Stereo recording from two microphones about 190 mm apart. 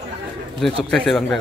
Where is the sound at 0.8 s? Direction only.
5° left (ahead or behind).